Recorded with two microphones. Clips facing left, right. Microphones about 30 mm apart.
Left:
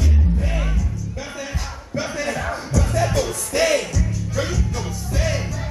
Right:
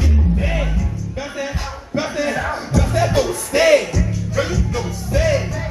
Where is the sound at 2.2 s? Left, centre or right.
Centre.